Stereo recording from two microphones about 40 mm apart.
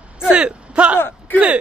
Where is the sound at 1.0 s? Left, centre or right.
Left.